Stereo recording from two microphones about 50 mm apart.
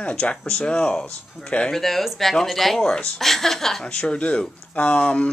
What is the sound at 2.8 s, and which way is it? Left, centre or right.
Speech, centre.